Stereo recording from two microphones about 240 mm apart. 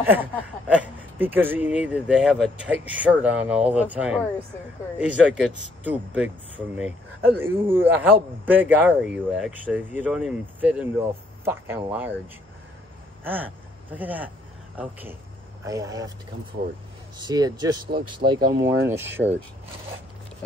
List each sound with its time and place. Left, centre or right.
0.0 s a man's voice: centre
13.2 s a man's voice: centre
17.2 s a man's voice: centre